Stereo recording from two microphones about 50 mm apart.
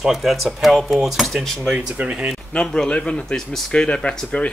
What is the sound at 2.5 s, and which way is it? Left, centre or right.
Speech, left.